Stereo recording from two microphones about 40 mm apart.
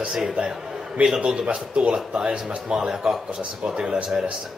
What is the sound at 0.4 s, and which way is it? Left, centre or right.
A man's voice, right.